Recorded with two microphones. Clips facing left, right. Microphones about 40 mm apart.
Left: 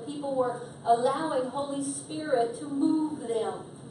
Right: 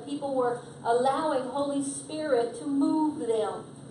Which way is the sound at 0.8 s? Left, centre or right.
Centre.